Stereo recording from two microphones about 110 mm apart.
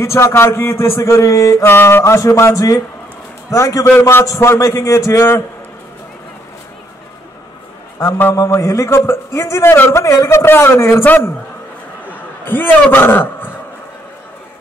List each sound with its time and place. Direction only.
0.0 s a man's voice: 25° left (ahead or behind)
8.0 s a man's voice: 25° left (ahead or behind)
12.4 s a man's voice: 20° left (ahead or behind)